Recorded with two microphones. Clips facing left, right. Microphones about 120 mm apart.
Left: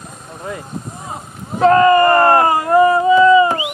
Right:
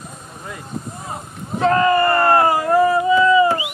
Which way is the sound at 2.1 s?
45° left (ahead or behind).